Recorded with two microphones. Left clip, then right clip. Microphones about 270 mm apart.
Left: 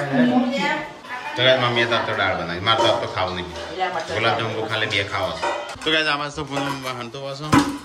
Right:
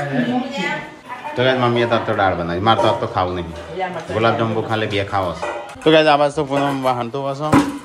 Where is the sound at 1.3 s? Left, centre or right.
Centre.